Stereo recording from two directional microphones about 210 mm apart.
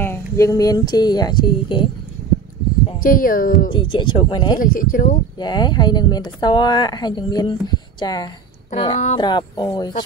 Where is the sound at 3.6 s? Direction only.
25° left (ahead or behind).